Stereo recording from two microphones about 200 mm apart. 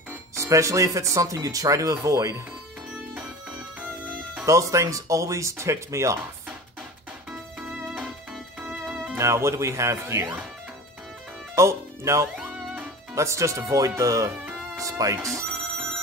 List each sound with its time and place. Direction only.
0.3 s speech: 15° right (ahead or behind)
4.5 s speech: 15° right (ahead or behind)
7.2 s music: centre (ahead or behind)
11.5 s speech: 15° right (ahead or behind)